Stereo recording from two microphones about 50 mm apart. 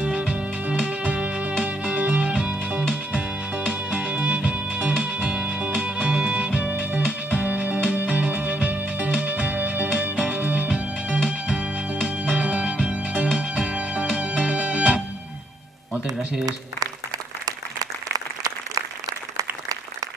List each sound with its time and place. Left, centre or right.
0.0 s music: right
10.7 s music: centre